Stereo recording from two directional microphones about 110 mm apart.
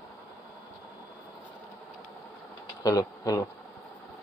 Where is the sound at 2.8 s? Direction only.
30° left (ahead or behind).